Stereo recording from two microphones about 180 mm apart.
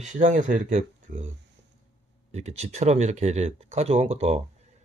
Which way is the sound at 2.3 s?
35° right (ahead or behind).